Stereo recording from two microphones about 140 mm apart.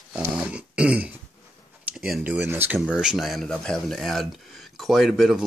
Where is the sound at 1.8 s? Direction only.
Centre (ahead or behind).